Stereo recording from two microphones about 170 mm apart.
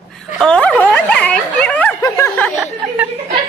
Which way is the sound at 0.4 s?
5° left (ahead or behind).